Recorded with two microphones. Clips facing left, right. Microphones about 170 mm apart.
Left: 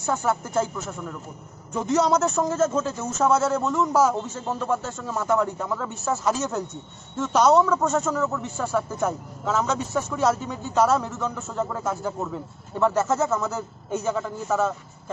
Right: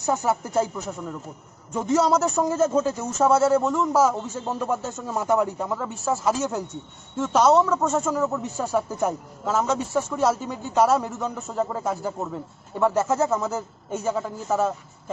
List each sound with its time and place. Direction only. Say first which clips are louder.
0.0 s speech: right 1 dB; 15° right (ahead or behind)